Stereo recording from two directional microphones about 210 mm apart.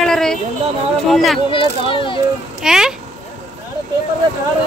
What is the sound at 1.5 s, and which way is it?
Speech, 25° left (ahead or behind).